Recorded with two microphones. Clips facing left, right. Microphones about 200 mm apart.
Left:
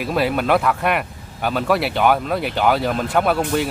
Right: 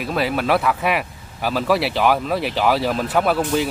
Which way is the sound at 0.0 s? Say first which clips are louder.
Left 2 dB; centre (ahead or behind).